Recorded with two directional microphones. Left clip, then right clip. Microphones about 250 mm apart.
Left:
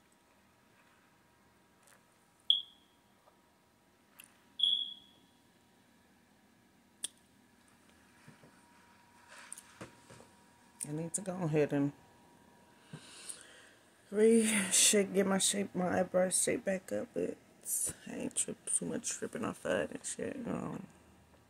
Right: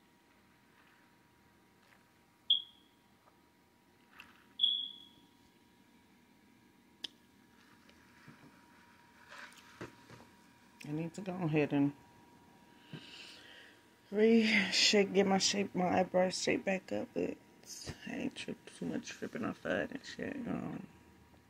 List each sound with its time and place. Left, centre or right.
7.0 s a sound: centre
10.8 s speech: centre
12.8 s sniff: left
14.1 s speech: centre